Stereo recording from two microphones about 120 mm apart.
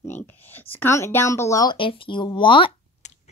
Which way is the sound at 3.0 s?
75° left (ahead or behind).